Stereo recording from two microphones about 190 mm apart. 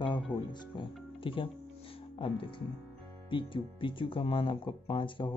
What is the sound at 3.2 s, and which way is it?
Speech, 25° left (ahead or behind).